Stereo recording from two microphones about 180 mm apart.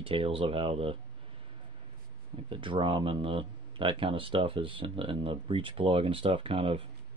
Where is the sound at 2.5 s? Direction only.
30° right (ahead or behind).